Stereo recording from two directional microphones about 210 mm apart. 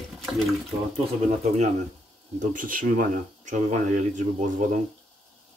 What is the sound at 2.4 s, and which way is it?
Speech, 40° right (ahead or behind).